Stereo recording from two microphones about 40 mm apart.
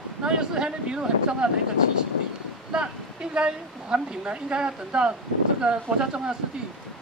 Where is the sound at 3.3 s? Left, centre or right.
Right.